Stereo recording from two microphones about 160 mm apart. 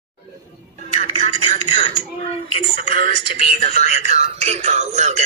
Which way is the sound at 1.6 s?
35° left (ahead or behind).